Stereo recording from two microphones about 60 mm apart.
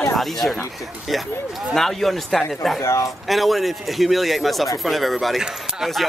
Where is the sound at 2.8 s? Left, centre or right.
Left.